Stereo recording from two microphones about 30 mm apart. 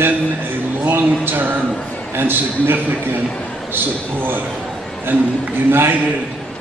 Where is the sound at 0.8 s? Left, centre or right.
Right.